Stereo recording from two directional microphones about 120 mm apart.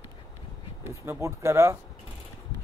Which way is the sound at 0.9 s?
20° right (ahead or behind).